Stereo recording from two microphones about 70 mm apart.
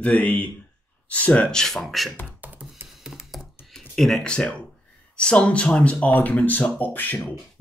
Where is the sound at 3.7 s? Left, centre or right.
Centre.